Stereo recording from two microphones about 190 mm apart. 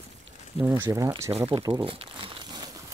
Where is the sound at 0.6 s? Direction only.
15° right (ahead or behind).